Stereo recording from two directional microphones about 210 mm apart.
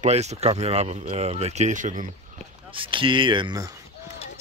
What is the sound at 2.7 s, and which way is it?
Speech, 25° right (ahead or behind).